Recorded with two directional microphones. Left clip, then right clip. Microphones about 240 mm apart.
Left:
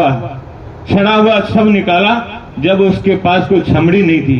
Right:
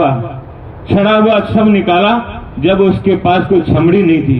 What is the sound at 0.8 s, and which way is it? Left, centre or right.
A man's voice, left.